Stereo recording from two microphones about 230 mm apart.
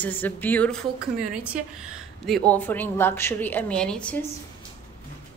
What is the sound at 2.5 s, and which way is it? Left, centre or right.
A woman's voice, centre.